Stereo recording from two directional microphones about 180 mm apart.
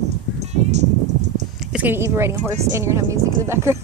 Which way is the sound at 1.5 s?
10° right (ahead or behind).